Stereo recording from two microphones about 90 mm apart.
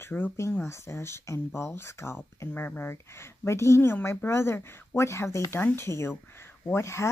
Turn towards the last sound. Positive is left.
turn(degrees=30)  # may be behind; listen again after turning